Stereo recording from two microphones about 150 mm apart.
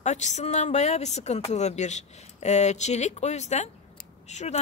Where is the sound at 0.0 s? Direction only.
50° left (ahead or behind).